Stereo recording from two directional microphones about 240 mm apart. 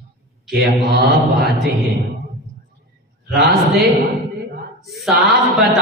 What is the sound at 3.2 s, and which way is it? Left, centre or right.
Speech, centre.